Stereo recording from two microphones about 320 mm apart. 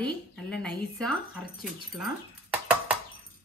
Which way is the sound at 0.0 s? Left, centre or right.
Centre.